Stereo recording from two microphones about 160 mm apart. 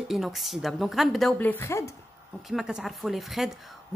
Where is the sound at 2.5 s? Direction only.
5° right (ahead or behind).